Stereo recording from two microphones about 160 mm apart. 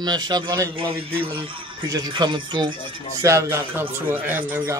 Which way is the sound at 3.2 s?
20° right (ahead or behind).